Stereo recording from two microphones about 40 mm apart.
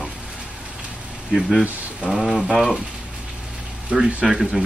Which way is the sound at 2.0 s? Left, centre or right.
Centre.